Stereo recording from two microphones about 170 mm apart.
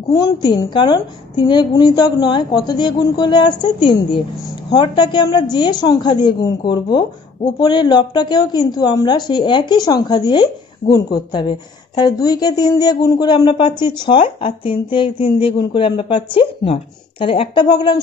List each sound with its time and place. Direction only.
0.1 s a woman's voice: 20° left (ahead or behind)
10.8 s speech: 45° left (ahead or behind)
11.1 s a woman's voice: 25° left (ahead or behind)